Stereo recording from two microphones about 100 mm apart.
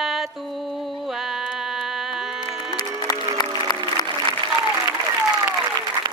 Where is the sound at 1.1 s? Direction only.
5° right (ahead or behind).